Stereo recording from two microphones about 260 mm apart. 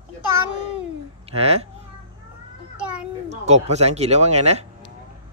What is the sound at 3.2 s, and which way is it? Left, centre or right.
Speech, right.